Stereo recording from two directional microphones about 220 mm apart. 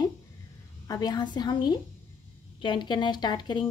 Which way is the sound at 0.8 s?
15° left (ahead or behind).